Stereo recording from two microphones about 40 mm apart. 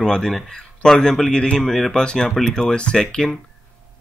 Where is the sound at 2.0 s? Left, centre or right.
Centre.